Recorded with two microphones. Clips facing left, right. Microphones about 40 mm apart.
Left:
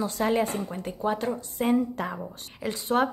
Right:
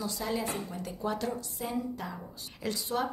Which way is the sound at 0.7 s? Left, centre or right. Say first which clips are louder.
Left 6 dB; left.